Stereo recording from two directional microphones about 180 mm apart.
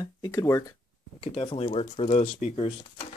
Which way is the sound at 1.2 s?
30° left (ahead or behind).